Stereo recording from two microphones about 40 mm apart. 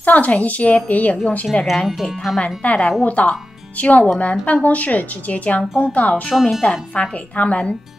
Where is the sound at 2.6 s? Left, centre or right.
Left.